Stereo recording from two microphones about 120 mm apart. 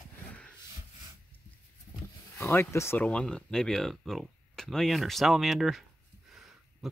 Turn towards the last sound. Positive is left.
turn(degrees=0)  # may be behind; listen again after turning